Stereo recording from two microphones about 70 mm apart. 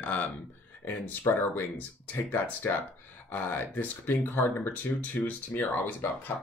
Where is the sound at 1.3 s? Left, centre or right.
Left.